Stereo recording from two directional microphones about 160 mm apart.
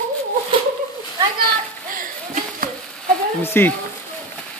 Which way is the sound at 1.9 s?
60° right (ahead or behind).